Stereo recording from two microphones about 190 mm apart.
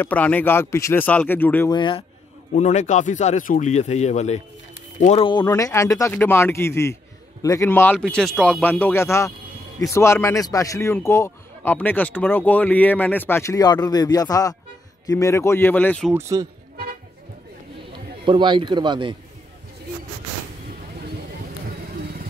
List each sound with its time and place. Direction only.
0.0 s speech: 10° left (ahead or behind)
1.7 s speech: 25° left (ahead or behind)
2.5 s speech: 35° left (ahead or behind)
5.4 s speech: 15° left (ahead or behind)
16.1 s a man's voice: 15° right (ahead or behind)
18.2 s a man's voice: 25° right (ahead or behind)